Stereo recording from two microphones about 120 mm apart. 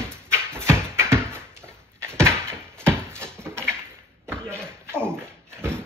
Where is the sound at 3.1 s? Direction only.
20° right (ahead or behind).